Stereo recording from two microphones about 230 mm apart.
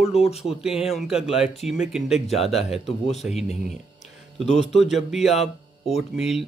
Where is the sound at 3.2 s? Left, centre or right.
Centre.